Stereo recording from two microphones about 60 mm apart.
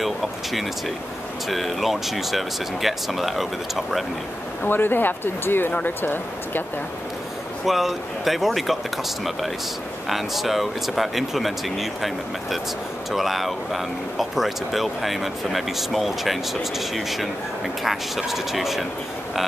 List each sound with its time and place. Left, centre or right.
0.0 s speech: centre
4.6 s speech: left
7.6 s speech: centre